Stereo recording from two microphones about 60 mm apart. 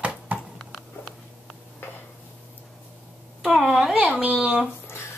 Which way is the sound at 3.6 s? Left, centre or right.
Centre.